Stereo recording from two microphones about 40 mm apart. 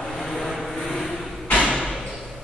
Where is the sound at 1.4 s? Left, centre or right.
Left.